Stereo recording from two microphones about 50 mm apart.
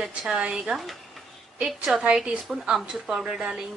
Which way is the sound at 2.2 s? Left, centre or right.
Centre.